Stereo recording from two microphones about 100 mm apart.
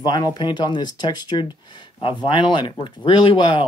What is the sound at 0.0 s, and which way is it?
Speech, 45° left (ahead or behind).